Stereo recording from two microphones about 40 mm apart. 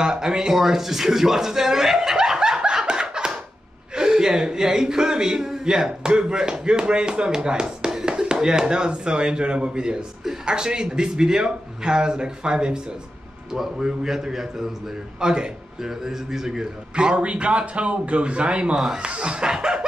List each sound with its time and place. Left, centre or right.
0.0 s a man's voice: centre
17.1 s speech: right